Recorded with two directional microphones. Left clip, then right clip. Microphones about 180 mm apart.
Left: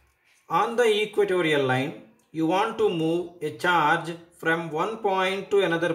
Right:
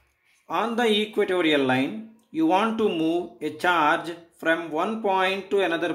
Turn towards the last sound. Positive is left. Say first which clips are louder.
# left 1 dB
turn(degrees=-25)  # may be behind; listen again after turning